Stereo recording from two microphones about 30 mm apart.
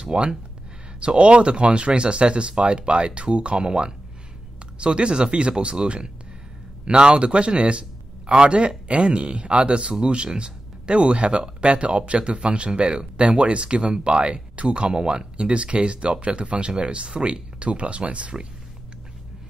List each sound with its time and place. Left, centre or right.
0.0 s speech: right
14.9 s speech: right